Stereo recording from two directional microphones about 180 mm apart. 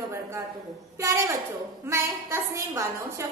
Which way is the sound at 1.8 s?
15° right (ahead or behind).